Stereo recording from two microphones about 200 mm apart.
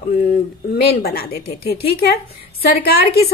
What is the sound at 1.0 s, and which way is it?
Speech, 50° left (ahead or behind).